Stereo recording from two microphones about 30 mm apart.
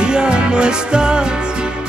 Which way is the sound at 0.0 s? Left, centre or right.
Right.